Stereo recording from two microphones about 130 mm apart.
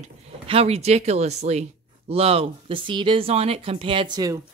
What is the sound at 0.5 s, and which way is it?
Speech, 50° right (ahead or behind).